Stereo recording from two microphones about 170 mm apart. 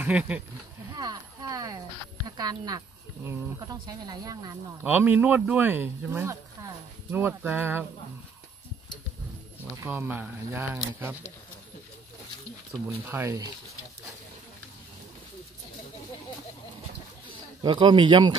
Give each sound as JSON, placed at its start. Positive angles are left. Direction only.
{"t": 0.0, "sound": "speech", "side_deg": -10}
{"t": 0.9, "sound": "a sound", "side_deg": -20}
{"t": 2.2, "sound": "speech", "side_deg": -20}
{"t": 4.8, "sound": "speech", "side_deg": -10}
{"t": 9.8, "sound": "speech", "side_deg": -10}
{"t": 12.8, "sound": "speech", "side_deg": -15}
{"t": 17.6, "sound": "speech", "side_deg": -25}